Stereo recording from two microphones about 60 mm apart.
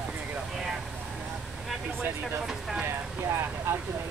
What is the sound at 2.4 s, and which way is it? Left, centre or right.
Speech, centre.